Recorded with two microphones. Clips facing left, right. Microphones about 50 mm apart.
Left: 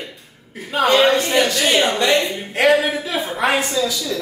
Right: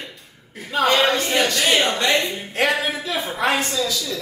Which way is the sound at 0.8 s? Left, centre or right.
Centre.